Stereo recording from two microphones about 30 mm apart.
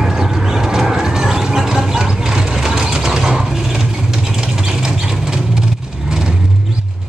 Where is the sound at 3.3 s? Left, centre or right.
Centre.